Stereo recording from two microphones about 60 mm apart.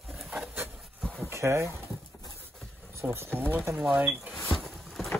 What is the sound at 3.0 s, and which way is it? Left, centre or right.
Speech, right.